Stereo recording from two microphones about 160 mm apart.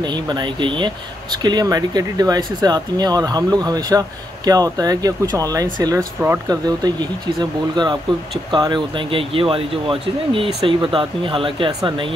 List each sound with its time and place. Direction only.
0.0 s speech: 25° right (ahead or behind)